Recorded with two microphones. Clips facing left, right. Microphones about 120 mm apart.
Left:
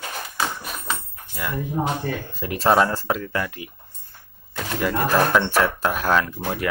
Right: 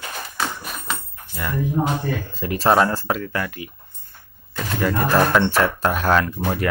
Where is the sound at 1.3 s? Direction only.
15° left (ahead or behind).